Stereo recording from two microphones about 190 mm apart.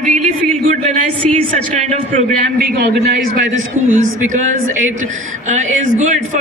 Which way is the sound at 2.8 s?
55° right (ahead or behind).